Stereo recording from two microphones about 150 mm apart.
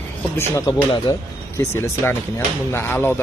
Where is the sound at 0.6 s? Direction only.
20° left (ahead or behind).